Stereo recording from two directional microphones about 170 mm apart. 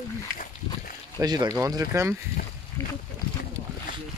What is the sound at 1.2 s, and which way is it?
Speech, 25° right (ahead or behind).